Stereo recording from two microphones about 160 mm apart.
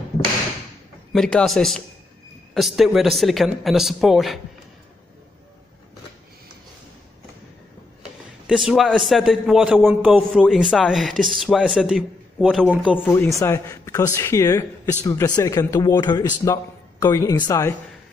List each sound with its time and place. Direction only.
1.1 s a man's voice: 5° left (ahead or behind)
8.5 s a man's voice: centre (ahead or behind)
13.0 s speech: 15° left (ahead or behind)